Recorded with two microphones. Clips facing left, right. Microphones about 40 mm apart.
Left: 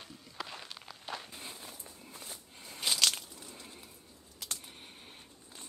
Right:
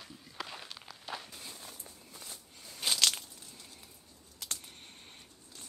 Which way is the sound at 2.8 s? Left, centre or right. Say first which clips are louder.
Even; centre.